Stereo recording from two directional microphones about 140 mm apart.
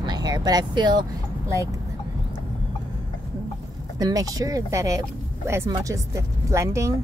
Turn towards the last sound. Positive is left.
turn(degrees=-20)  # may be behind; listen again after turning